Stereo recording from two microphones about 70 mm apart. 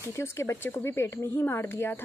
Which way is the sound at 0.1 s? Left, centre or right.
Left.